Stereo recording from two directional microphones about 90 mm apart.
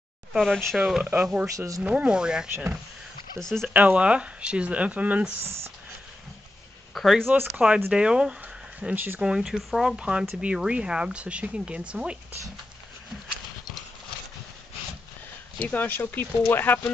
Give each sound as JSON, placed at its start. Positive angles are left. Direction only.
{"t": 0.3, "sound": "speech", "side_deg": 0}
{"t": 1.0, "sound": "speech", "side_deg": -15}
{"t": 2.5, "sound": "speech", "side_deg": -20}
{"t": 3.3, "sound": "speech", "side_deg": 5}
{"t": 3.6, "sound": "speech", "side_deg": -15}
{"t": 6.9, "sound": "speech", "side_deg": 0}
{"t": 7.5, "sound": "speech", "side_deg": -10}
{"t": 8.8, "sound": "speech", "side_deg": -20}
{"t": 9.2, "sound": "speech", "side_deg": -10}
{"t": 15.6, "sound": "speech", "side_deg": 20}